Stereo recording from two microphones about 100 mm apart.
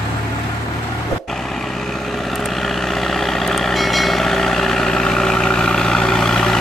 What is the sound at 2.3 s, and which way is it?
Vehicle, centre (ahead or behind).